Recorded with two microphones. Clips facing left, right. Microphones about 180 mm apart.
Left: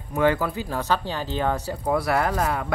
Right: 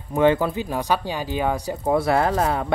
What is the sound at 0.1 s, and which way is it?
Speech, 20° right (ahead or behind).